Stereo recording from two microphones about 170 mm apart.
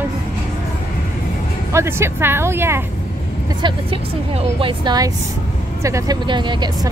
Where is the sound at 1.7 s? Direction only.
15° right (ahead or behind).